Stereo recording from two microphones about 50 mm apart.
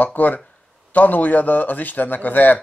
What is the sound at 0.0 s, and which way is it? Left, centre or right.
Speech, left.